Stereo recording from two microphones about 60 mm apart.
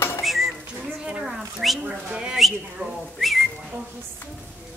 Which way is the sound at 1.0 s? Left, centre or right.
Centre.